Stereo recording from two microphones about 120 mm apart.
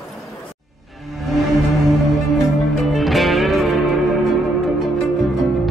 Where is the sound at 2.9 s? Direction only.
Centre (ahead or behind).